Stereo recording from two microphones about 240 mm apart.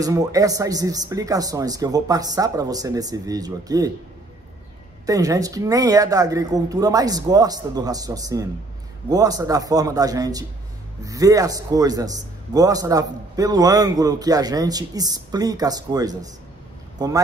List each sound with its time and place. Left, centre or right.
0.0 s a man's voice: centre
5.0 s a man's voice: centre